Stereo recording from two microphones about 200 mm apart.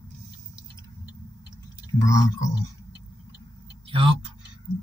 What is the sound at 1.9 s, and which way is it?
Speech, 15° left (ahead or behind).